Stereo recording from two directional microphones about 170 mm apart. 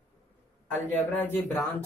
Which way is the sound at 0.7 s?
10° left (ahead or behind).